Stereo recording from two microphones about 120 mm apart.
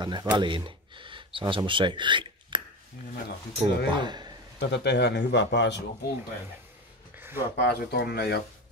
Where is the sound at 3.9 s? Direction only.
40° right (ahead or behind).